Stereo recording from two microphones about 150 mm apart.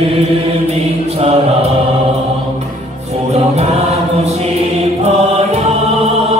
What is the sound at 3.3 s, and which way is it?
Choir, 45° right (ahead or behind).